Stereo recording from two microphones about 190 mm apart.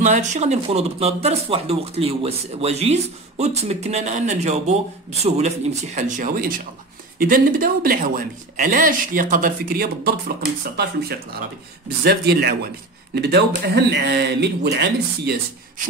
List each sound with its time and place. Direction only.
0.0 s speech: 40° right (ahead or behind); by 15.3 s 60° right (ahead or behind)